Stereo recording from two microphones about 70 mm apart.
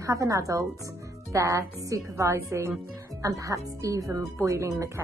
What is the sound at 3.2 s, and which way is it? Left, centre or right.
Speech, right.